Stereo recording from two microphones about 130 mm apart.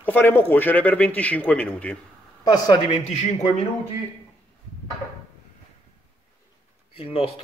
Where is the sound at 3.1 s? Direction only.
65° left (ahead or behind).